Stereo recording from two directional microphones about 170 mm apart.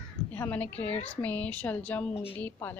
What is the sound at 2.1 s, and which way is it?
Speech, 30° left (ahead or behind).